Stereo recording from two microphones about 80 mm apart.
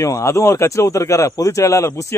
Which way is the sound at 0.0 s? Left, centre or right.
Left.